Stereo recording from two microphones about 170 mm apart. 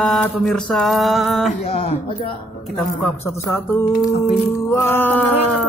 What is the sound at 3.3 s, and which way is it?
Speech, 15° left (ahead or behind).